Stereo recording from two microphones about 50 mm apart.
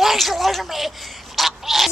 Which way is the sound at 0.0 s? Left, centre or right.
Centre.